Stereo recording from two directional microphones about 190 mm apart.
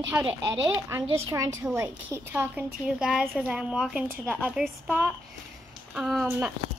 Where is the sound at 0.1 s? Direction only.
5° right (ahead or behind).